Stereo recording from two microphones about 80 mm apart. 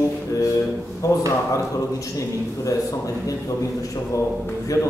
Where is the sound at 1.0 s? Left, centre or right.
Left.